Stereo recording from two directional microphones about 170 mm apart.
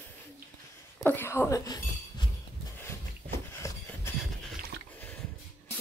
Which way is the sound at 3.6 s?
20° left (ahead or behind).